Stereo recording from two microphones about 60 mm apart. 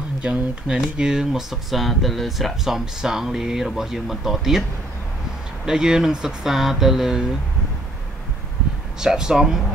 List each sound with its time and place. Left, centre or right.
0.2 s speech: centre
5.7 s speech: centre
9.0 s speech: centre